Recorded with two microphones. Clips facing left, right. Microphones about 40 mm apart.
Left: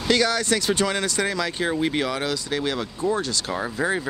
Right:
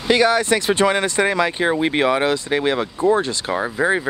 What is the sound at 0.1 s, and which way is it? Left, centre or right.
Speech, right.